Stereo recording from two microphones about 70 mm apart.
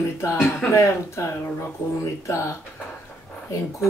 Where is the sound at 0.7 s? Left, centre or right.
Left.